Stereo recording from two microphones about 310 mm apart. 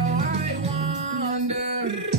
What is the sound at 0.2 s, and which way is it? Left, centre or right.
Music, right.